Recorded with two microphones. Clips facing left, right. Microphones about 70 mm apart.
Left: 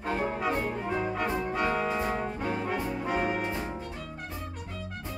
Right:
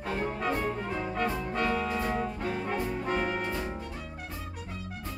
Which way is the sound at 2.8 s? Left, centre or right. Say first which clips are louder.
Left 1 dB; centre.